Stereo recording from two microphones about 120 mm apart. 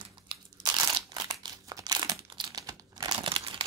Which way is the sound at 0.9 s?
40° right (ahead or behind).